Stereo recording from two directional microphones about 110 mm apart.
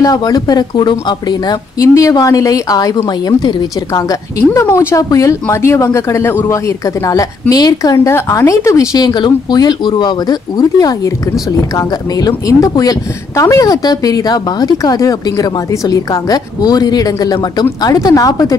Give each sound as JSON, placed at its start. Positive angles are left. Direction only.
{"t": 0.0, "sound": "speech", "side_deg": 35}